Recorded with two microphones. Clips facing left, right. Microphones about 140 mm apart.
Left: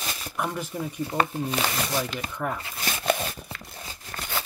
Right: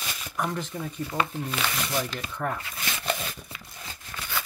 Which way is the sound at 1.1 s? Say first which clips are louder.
Left 3 dB; 35° left (ahead or behind).